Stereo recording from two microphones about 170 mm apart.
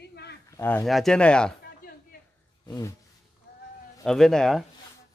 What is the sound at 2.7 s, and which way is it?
Speech, 20° left (ahead or behind).